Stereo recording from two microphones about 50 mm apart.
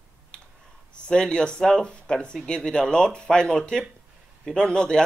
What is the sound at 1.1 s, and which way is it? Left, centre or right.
Speech, centre.